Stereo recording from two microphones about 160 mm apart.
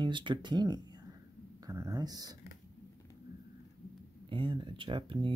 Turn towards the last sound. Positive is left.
turn(degrees=-30)  # may be behind; listen again after turning